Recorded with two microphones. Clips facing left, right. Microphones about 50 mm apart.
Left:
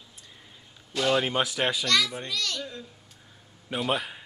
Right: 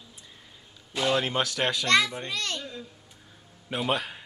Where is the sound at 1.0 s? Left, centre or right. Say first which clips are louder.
Left 1 dB; centre.